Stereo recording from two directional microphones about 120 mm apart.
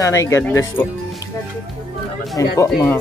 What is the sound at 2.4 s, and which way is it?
Speech, 25° left (ahead or behind).